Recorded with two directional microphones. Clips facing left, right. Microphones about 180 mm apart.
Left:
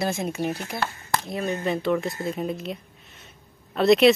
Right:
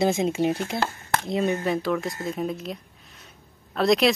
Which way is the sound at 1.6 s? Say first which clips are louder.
Left 1 dB; centre (ahead or behind).